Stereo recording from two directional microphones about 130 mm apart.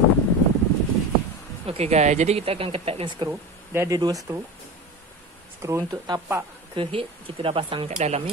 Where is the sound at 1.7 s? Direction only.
55° right (ahead or behind).